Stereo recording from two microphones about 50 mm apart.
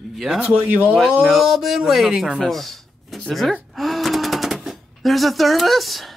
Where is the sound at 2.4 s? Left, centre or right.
Centre.